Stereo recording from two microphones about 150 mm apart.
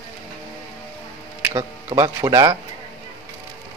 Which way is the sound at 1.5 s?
35° right (ahead or behind).